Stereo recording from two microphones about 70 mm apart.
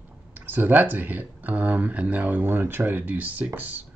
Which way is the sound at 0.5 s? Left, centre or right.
Right.